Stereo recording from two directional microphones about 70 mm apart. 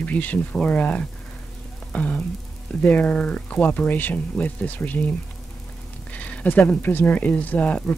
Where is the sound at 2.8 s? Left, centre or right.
Left.